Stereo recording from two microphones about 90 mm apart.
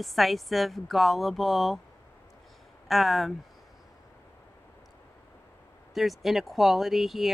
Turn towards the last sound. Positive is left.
turn(degrees=0)  # may be behind; listen again after turning